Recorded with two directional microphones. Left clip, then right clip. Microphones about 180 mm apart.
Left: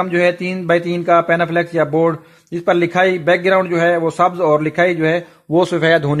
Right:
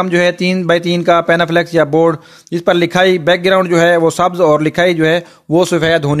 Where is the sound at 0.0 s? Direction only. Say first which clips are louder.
Right 3 dB; 40° right (ahead or behind).